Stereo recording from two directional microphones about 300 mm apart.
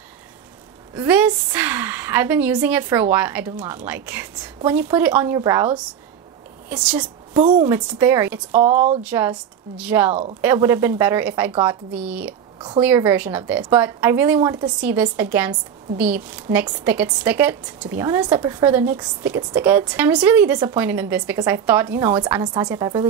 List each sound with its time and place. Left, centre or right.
0.9 s a woman's voice: centre
12.5 s a sound: centre
12.8 s a woman's voice: centre